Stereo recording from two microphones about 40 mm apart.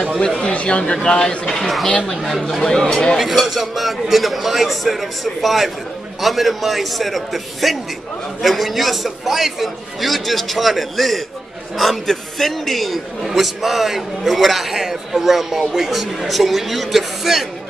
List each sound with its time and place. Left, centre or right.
0.5 s speech: left
1.5 s a man's voice: centre
3.2 s a man's voice: centre